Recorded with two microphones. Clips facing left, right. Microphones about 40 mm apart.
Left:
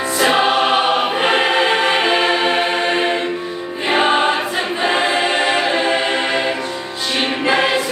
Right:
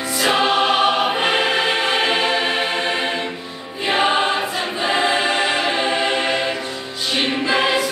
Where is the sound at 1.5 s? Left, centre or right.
Left.